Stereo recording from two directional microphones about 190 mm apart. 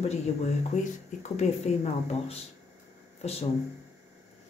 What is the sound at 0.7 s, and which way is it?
Speech, 40° left (ahead or behind).